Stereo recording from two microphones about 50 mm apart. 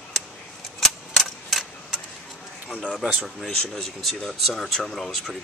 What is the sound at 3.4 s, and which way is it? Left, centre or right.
Speech, centre.